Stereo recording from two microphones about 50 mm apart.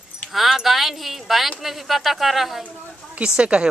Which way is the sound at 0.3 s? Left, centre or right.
Centre.